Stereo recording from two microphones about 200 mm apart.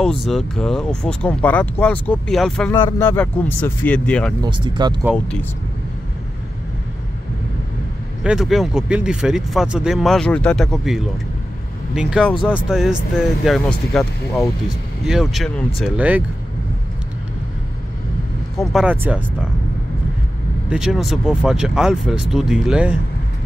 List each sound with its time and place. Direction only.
0.3 s speech: centre (ahead or behind)
4.4 s speech: 20° right (ahead or behind)
8.2 s speech: 5° right (ahead or behind)
18.6 s speech: centre (ahead or behind)
20.7 s speech: 5° right (ahead or behind)